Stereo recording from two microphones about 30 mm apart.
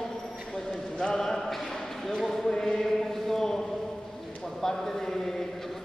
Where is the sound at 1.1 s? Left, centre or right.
Centre.